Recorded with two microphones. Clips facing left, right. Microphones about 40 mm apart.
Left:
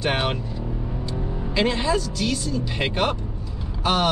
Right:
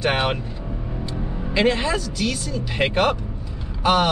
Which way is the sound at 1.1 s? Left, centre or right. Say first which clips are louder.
Right 2 dB; centre.